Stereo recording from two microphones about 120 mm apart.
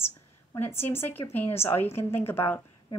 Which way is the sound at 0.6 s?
20° left (ahead or behind).